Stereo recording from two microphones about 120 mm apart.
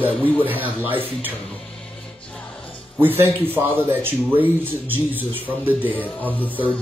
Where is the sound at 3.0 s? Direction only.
15° right (ahead or behind).